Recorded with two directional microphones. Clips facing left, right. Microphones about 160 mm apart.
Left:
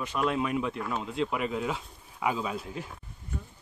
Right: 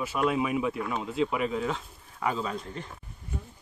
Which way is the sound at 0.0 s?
5° right (ahead or behind).